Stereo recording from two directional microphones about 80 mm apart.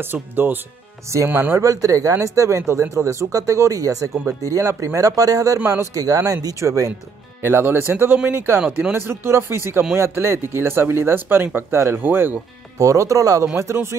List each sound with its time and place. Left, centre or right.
0.0 s speech: right
1.6 s speech: right
7.4 s speech: right
8.5 s speech: centre
8.9 s speech: right
12.7 s speech: right